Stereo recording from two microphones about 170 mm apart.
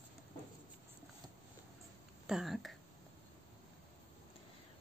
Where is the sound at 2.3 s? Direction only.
Centre (ahead or behind).